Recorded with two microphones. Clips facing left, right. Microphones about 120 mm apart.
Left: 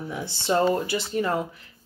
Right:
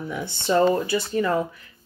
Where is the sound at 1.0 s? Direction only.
25° left (ahead or behind).